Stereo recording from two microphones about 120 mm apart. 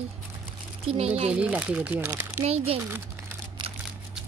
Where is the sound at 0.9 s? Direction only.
60° right (ahead or behind).